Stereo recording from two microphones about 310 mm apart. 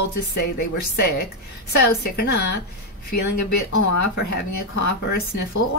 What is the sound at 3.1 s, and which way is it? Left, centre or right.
A woman's voice, left.